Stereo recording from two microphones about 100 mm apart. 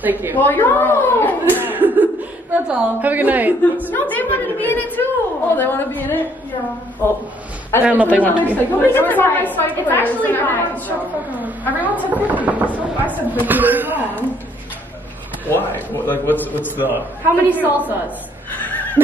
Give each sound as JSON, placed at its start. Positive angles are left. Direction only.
{"t": 0.0, "sound": "a woman's voice", "side_deg": -20}
{"t": 0.4, "sound": "a sound", "side_deg": 20}
{"t": 1.6, "sound": "chuckle", "side_deg": -20}
{"t": 2.5, "sound": "speech", "side_deg": -15}
{"t": 3.9, "sound": "a woman's voice", "side_deg": 20}
{"t": 7.8, "sound": "speech", "side_deg": -15}
{"t": 8.1, "sound": "a woman's voice", "side_deg": 15}
{"t": 10.9, "sound": "speech", "side_deg": -15}
{"t": 15.5, "sound": "a woman's voice", "side_deg": 20}
{"t": 16.7, "sound": "a woman's voice", "side_deg": -20}
{"t": 18.6, "sound": "a sound", "side_deg": 20}